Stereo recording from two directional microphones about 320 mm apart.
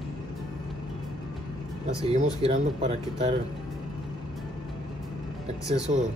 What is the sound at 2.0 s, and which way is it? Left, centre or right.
Speech, centre.